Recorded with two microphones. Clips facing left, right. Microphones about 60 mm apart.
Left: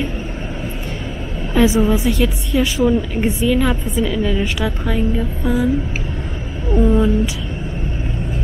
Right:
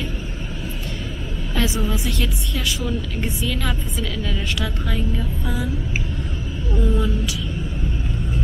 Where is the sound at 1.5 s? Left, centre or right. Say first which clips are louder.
Left 10 dB; centre.